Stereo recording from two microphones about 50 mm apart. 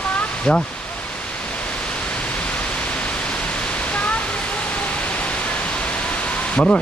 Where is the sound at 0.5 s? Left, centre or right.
Centre.